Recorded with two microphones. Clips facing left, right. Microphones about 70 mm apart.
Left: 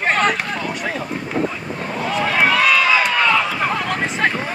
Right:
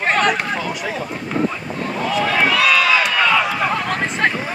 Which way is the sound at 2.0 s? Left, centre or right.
Centre.